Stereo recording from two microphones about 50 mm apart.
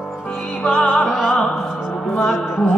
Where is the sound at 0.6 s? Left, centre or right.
Centre.